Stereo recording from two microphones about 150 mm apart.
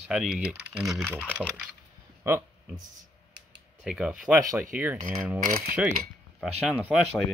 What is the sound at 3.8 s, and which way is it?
Speech, 5° right (ahead or behind).